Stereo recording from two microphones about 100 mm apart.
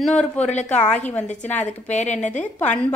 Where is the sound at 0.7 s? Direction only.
15° left (ahead or behind).